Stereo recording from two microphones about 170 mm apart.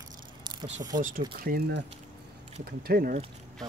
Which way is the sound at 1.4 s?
60° right (ahead or behind).